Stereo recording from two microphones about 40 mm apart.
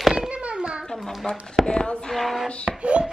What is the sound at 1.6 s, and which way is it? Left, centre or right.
Speech, left.